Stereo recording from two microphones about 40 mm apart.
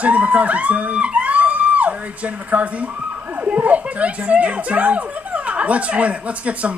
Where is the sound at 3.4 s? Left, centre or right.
Right.